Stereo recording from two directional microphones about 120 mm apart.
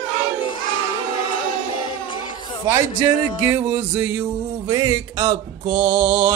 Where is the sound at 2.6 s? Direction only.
20° right (ahead or behind).